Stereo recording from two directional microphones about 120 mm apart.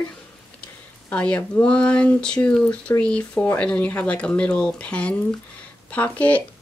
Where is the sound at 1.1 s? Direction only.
10° left (ahead or behind).